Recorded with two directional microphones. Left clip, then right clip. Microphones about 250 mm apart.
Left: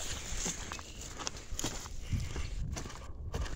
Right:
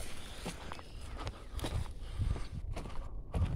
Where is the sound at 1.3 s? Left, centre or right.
Left.